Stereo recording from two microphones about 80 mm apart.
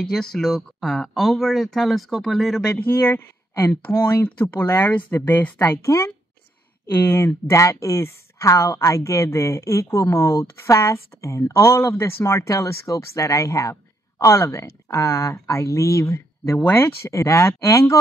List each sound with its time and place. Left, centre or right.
0.0 s speech: centre
2.7 s speech: left
5.6 s speech: left